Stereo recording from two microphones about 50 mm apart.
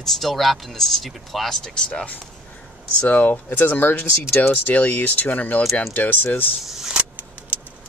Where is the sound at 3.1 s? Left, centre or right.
Left.